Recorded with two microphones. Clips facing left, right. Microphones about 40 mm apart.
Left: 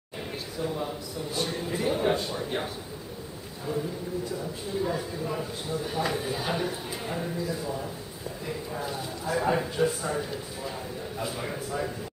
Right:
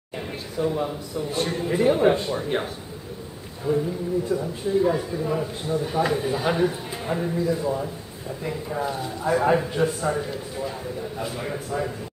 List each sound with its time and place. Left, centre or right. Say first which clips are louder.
0.6 s speech: right 7 dB; centre
3.7 s speech: right 8 dB; centre
9.6 s speech: right 3 dB; centre